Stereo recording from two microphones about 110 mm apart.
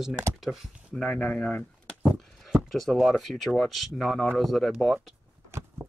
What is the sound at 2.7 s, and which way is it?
Speech, centre (ahead or behind).